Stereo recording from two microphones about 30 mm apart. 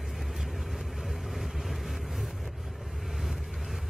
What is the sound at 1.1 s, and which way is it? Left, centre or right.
Vehicle, centre.